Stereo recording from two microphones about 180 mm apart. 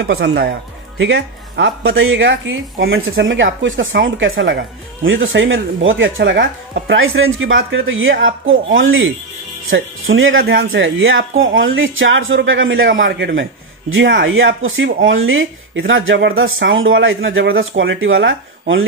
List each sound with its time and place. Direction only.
0.0 s speech: 70° right (ahead or behind); by 18.9 s 90° right